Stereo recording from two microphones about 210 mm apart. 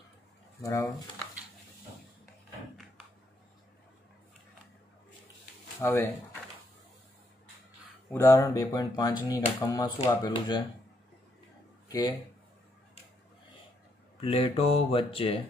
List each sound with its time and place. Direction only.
0.6 s speech: 15° left (ahead or behind)
5.8 s speech: 10° left (ahead or behind)
8.1 s speech: 15° left (ahead or behind)
11.9 s speech: 20° left (ahead or behind)
14.2 s speech: 25° left (ahead or behind)